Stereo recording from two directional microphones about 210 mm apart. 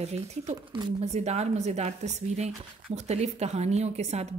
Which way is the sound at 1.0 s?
30° right (ahead or behind).